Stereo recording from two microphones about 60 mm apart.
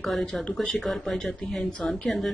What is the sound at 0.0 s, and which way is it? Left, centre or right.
Speech, centre.